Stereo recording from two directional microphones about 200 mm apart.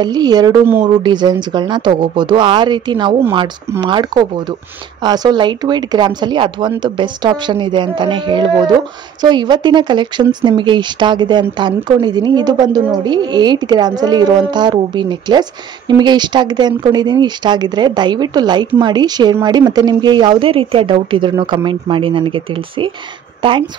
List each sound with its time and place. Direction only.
0.0 s a woman's voice: 20° right (ahead or behind)